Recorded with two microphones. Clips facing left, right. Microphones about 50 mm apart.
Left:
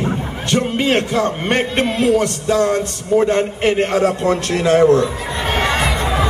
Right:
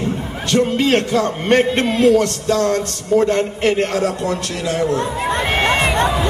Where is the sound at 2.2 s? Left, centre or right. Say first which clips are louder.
Left 1 dB; centre; by 5.0 s left.